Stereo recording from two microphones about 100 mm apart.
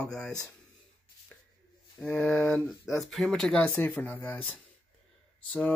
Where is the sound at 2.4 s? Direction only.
25° left (ahead or behind).